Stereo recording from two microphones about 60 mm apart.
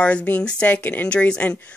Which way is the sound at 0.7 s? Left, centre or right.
Left.